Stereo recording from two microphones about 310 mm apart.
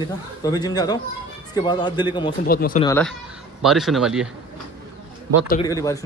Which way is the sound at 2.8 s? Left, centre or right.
Centre.